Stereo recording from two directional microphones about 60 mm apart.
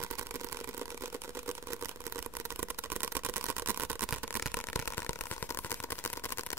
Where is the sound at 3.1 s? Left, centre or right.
Right.